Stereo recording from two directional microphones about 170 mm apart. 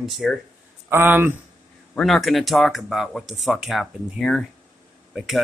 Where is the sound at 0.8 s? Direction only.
15° right (ahead or behind).